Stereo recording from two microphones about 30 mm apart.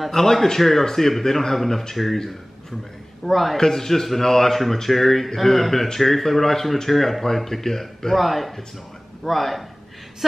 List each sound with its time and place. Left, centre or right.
0.1 s speech: centre
3.3 s speech: centre
3.5 s speech: centre